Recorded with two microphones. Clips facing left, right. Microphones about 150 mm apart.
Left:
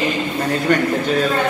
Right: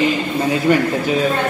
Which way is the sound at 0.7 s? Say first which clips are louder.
Right 2 dB; 5° right (ahead or behind).